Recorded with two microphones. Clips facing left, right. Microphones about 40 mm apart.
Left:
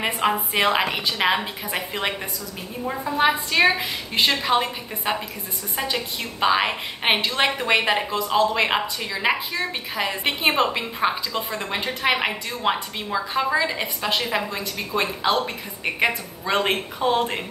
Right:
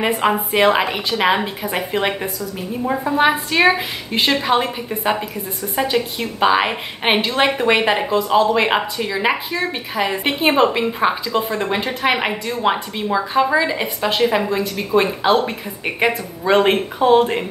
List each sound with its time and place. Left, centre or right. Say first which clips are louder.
0.0 s a woman's voice: right 5 dB; centre
6.4 s a woman's voice: right 4 dB; centre